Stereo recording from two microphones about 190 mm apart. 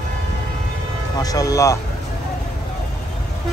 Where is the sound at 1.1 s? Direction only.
20° left (ahead or behind).